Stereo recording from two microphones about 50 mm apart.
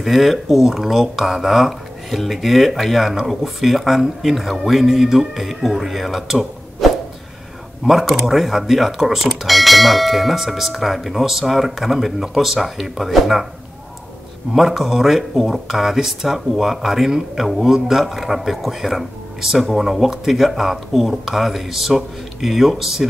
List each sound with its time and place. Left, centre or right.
0.0 s speech: centre
14.5 s speech: centre